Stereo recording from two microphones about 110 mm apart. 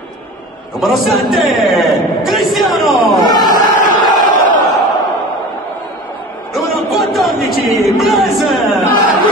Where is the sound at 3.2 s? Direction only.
35° left (ahead or behind).